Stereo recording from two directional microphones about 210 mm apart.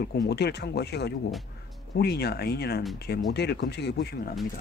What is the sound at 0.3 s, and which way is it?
Speech, 50° left (ahead or behind).